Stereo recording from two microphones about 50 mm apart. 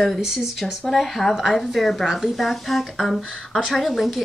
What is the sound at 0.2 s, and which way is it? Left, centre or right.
Speech, centre.